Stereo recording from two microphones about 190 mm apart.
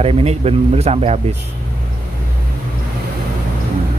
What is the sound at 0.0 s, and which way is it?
Speech, 30° right (ahead or behind).